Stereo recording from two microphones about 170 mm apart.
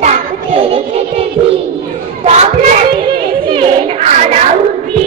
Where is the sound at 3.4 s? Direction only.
30° right (ahead or behind).